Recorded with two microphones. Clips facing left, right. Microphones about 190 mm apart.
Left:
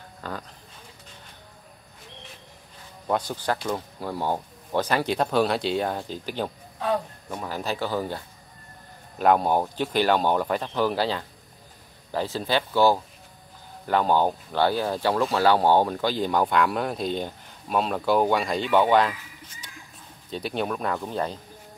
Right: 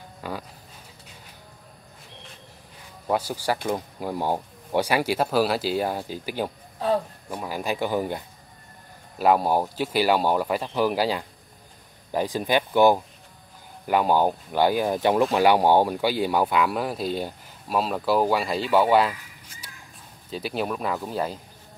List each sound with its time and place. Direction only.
0.2 s speech: 10° right (ahead or behind)
3.1 s speech: 10° right (ahead or behind)
9.2 s speech: 5° right (ahead or behind)
19.6 s a sound: 10° right (ahead or behind)
20.2 s speech: 5° right (ahead or behind)